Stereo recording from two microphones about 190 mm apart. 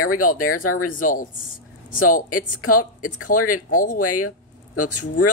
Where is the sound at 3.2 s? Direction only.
45° left (ahead or behind).